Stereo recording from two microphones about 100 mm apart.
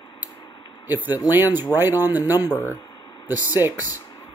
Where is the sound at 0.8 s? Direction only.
20° right (ahead or behind).